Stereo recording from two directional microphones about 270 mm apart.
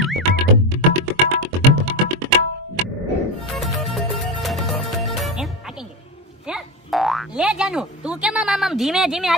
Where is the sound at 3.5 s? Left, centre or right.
Centre.